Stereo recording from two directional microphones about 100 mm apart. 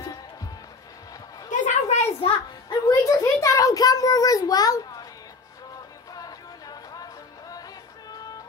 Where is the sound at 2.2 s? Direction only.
75° left (ahead or behind).